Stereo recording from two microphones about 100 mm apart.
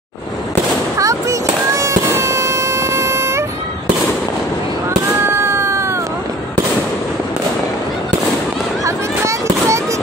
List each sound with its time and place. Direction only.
0.9 s a sound: 35° right (ahead or behind)
5.2 s cat: 25° right (ahead or behind)
8.8 s fireworks: 30° right (ahead or behind)